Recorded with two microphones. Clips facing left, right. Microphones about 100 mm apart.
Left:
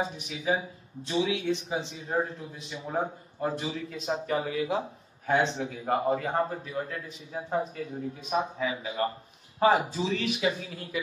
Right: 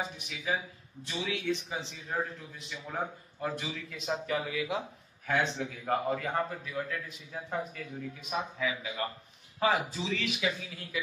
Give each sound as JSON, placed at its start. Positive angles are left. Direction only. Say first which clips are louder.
{"t": 0.0, "sound": "speech", "louder": "left 6 dB", "side_deg": 30}